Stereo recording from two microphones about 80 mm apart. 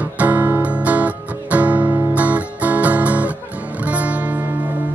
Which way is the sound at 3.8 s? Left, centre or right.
Centre.